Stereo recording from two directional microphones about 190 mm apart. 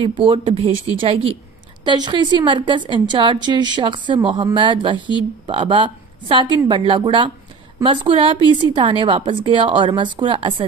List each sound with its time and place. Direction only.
0.0 s a woman's voice: 25° right (ahead or behind)